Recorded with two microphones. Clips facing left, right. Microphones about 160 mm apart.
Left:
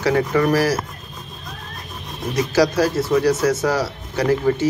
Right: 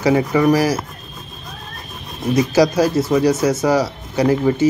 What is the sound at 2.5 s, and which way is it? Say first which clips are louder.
A man's voice: even; 20° right (ahead or behind).